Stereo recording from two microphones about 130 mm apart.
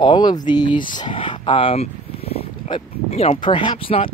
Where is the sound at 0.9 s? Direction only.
40° left (ahead or behind).